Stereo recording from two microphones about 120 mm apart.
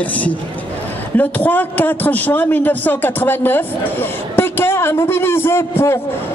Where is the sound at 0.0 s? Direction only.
10° left (ahead or behind).